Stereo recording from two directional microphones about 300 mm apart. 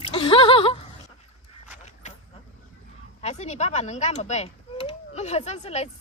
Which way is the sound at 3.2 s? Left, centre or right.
Left.